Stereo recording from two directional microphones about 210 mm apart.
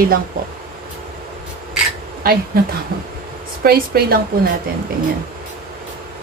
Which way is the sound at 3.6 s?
45° right (ahead or behind).